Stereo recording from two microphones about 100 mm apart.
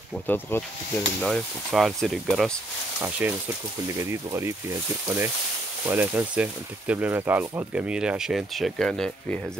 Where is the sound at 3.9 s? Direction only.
30° right (ahead or behind).